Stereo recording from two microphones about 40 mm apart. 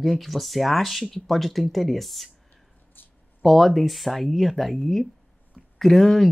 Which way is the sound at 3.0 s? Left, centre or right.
Left.